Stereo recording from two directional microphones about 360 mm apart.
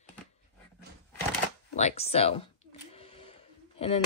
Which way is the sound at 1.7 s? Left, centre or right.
Centre.